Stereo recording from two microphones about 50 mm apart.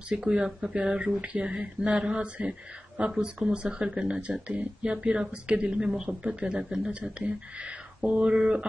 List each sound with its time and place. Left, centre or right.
0.1 s speech: centre